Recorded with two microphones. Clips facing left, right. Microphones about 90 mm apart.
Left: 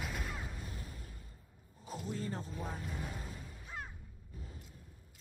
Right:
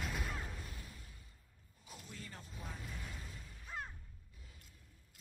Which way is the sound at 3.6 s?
5° left (ahead or behind).